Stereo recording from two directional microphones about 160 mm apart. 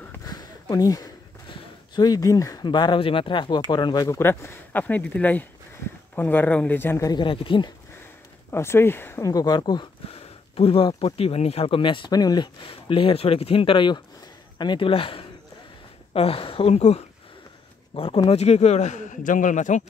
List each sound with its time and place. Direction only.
0.1 s speech: 25° left (ahead or behind)
8.5 s a man's voice: 15° left (ahead or behind); by 19.8 s 50° left (ahead or behind)